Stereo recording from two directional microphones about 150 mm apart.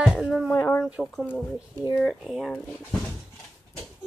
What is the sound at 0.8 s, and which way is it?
Speech, 5° right (ahead or behind).